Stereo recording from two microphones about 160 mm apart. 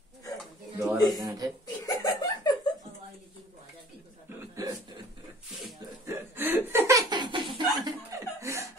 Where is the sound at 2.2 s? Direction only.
25° left (ahead or behind).